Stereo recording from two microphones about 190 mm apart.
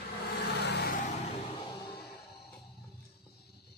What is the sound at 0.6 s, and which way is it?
Vehicle, 60° left (ahead or behind).